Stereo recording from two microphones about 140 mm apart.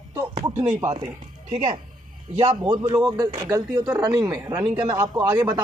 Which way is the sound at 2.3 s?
30° right (ahead or behind).